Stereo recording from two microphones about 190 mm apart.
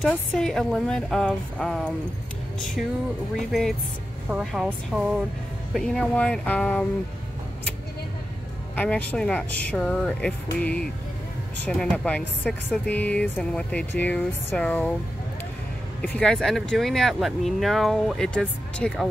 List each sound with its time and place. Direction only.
0.0 s speech: 5° left (ahead or behind)
4.3 s a woman's voice: centre (ahead or behind)
8.7 s a woman's voice: 5° left (ahead or behind)
16.0 s speech: 5° left (ahead or behind)